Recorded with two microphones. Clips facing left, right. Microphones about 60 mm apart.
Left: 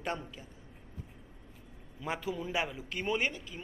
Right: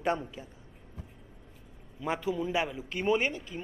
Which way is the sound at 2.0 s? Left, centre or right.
Right.